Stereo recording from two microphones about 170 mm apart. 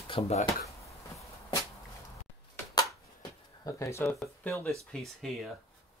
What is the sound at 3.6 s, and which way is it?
Speech, 15° left (ahead or behind).